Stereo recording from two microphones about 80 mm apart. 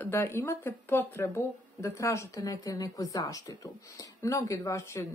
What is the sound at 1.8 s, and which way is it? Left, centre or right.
A woman's voice, left.